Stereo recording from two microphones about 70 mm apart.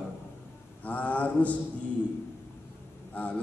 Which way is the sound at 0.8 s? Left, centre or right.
Left.